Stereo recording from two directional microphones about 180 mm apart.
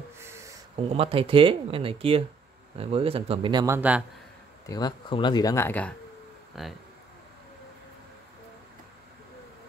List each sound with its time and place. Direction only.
0.2 s a sound: 15° right (ahead or behind)
0.7 s speech: 35° right (ahead or behind)
3.6 s speech: 10° right (ahead or behind)
4.6 s speech: 20° left (ahead or behind); by 6.7 s centre (ahead or behind)